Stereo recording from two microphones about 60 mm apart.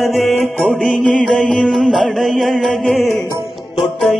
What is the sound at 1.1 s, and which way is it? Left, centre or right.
Music, centre.